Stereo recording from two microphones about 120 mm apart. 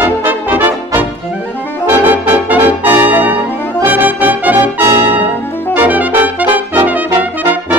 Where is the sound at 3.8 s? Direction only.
15° right (ahead or behind).